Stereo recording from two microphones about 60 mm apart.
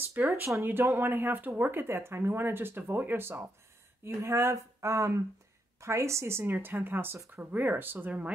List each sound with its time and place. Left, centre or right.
0.2 s speech: right